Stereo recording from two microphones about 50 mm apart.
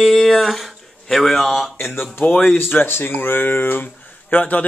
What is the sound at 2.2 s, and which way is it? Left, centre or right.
A man's voice, left.